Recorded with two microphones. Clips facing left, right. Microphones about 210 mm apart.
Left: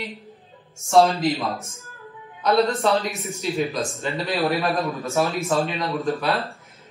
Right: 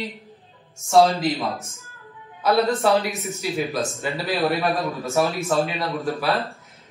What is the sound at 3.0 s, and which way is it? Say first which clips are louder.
Speech: right 1 dB; 30° left (ahead or behind).